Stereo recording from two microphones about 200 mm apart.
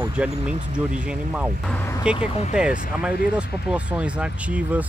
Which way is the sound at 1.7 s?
15° left (ahead or behind).